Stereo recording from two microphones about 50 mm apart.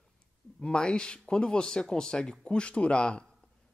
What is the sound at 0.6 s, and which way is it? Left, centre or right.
Speech, centre.